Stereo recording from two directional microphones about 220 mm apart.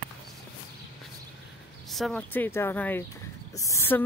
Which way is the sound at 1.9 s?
Centre (ahead or behind).